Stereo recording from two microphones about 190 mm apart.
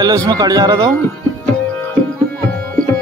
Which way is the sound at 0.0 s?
20° right (ahead or behind).